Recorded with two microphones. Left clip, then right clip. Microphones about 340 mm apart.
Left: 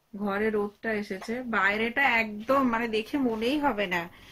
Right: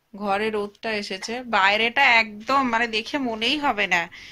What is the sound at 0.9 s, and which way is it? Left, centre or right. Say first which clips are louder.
Speech: right 5 dB; right.